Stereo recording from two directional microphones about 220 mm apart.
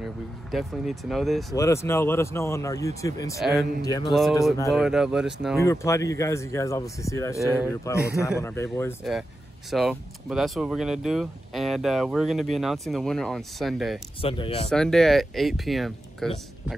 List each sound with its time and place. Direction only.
0.0 s speech: centre (ahead or behind)
1.5 s speech: 15° left (ahead or behind)
3.3 s speech: centre (ahead or behind)
5.6 s speech: 15° left (ahead or behind)
9.7 s speech: centre (ahead or behind)
14.2 s speech: 25° left (ahead or behind)
14.7 s speech: centre (ahead or behind)